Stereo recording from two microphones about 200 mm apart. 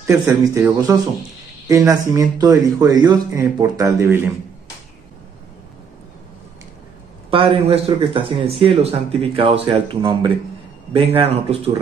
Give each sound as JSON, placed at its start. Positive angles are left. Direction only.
{"t": 0.6, "sound": "speech", "side_deg": -15}
{"t": 7.2, "sound": "speech", "side_deg": -30}